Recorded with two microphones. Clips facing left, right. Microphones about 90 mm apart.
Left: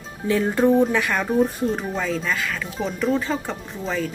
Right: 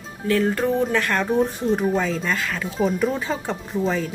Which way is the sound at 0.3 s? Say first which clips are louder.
Left 2 dB; 10° left (ahead or behind).